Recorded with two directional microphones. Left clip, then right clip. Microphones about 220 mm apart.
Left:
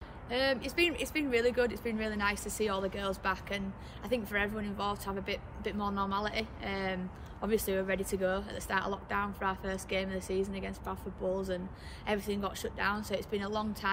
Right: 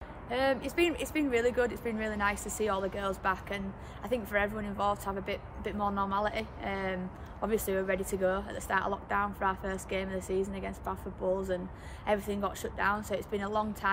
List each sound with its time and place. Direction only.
0.3 s speech: 10° right (ahead or behind)